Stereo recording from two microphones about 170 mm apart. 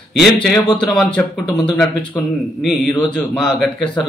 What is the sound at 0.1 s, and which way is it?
Speech, centre (ahead or behind).